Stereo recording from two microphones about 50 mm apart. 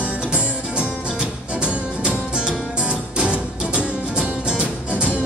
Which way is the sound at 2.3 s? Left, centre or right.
Centre.